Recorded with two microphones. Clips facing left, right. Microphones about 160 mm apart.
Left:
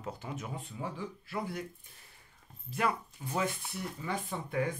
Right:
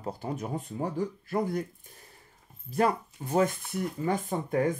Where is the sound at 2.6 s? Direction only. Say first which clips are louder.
Right 6 dB; 40° right (ahead or behind).